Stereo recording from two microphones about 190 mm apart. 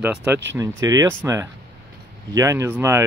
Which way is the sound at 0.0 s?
5° right (ahead or behind).